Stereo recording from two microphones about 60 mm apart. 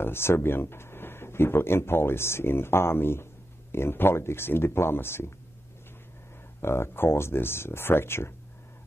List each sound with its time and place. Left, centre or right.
0.0 s speech: left
6.6 s speech: left